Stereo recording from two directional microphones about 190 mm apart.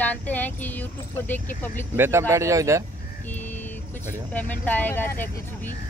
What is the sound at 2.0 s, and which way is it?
Speech, 15° right (ahead or behind).